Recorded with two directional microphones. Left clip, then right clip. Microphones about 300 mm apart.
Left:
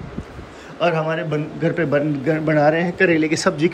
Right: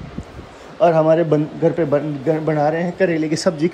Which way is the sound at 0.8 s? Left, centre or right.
Centre.